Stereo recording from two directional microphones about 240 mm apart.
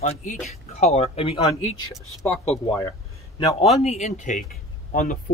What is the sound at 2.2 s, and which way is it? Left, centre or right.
Speech, centre.